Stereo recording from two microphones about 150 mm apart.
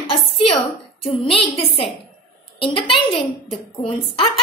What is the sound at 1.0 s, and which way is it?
Speech, 35° left (ahead or behind).